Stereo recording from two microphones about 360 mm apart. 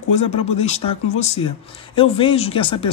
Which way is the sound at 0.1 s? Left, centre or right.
Centre.